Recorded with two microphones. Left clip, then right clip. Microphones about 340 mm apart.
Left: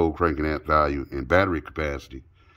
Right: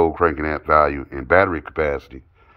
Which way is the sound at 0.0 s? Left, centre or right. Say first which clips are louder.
Right 5 dB; centre.